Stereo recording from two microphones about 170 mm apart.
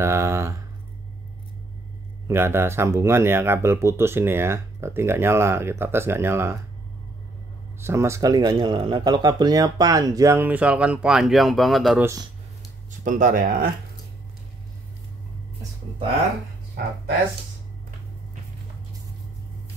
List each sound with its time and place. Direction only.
0.0 s a sound: 15° right (ahead or behind)
2.2 s speech: 15° right (ahead or behind)
7.8 s speech: 15° right (ahead or behind); by 12.0 s centre (ahead or behind)
12.0 s speech: 20° right (ahead or behind)
13.0 s speech: 50° right (ahead or behind)